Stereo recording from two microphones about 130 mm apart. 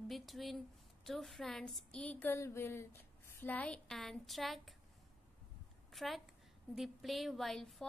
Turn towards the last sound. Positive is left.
turn(degrees=0)  # may be behind; listen again after turning